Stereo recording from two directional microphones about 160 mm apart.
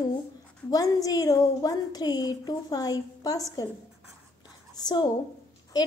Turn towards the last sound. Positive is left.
turn(degrees=25)  # may be behind; listen again after turning